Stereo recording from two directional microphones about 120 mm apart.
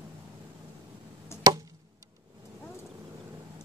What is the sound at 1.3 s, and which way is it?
Chop, 20° left (ahead or behind).